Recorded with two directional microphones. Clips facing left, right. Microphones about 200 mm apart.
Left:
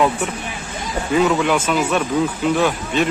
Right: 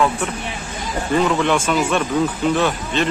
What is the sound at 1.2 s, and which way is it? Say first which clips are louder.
Speech: left 1 dB; 5° left (ahead or behind).